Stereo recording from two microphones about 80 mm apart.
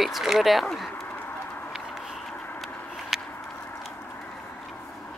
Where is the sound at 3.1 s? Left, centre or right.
Centre.